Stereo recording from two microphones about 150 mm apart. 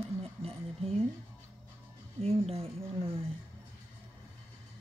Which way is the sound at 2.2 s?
40° right (ahead or behind).